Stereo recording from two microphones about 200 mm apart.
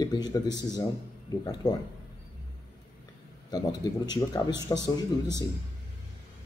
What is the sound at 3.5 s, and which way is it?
Speech, 20° left (ahead or behind).